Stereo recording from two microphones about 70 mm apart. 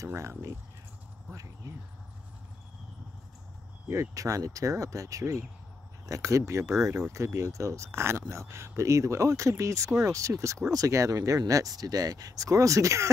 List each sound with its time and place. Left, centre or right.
0.0 s speech: right
3.9 s speech: right